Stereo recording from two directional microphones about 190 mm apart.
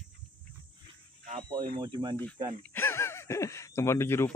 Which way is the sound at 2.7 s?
15° left (ahead or behind).